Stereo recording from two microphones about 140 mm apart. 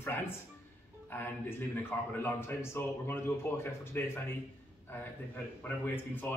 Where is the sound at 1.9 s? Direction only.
15° left (ahead or behind).